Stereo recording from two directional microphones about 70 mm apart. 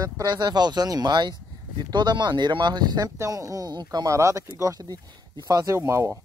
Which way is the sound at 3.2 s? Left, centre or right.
Right.